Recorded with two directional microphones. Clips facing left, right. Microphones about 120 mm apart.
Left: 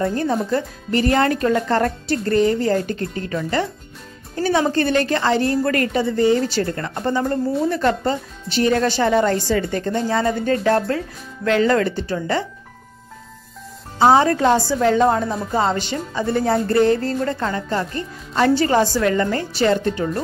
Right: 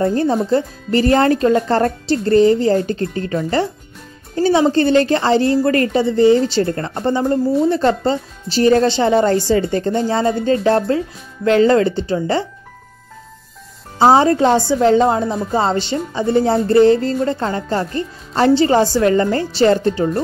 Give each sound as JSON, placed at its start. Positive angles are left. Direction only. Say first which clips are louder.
{"t": 0.0, "sound": "speech", "louder": "right 4 dB", "side_deg": -30}
{"t": 0.5, "sound": "music", "louder": "right 5 dB", "side_deg": -30}
{"t": 4.4, "sound": "speech", "louder": "right 5 dB", "side_deg": -25}
{"t": 13.9, "sound": "speech", "louder": "right 3 dB", "side_deg": -30}
{"t": 16.6, "sound": "music", "louder": "right 5 dB", "side_deg": -25}